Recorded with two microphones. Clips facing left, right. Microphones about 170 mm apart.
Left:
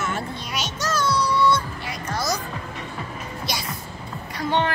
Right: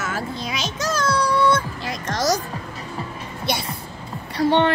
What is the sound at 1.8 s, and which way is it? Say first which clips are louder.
Music: right 6 dB; 90° right.